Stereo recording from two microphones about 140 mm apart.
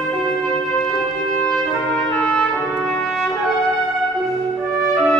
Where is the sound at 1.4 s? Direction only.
5° left (ahead or behind).